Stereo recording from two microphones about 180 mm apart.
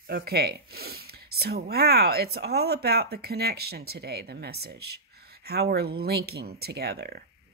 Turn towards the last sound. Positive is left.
turn(degrees=-60)  # may be behind; listen again after turning